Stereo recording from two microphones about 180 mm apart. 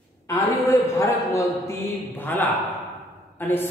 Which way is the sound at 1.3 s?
15° left (ahead or behind).